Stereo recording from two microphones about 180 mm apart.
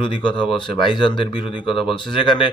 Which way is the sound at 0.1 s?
25° left (ahead or behind).